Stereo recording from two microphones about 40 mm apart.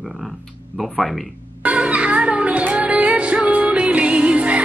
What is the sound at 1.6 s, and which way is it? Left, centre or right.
Music, right.